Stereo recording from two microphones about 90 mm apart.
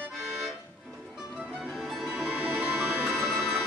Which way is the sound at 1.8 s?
Centre (ahead or behind).